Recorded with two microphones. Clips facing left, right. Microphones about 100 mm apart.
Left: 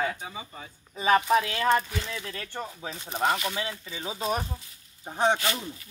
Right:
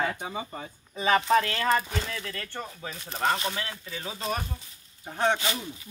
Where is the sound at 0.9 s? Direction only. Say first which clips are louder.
Even; 10° left (ahead or behind).